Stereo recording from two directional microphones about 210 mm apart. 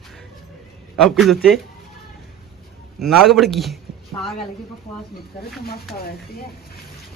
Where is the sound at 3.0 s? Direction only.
Centre (ahead or behind).